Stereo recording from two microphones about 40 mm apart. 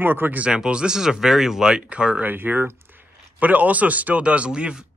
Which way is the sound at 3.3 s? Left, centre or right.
Right.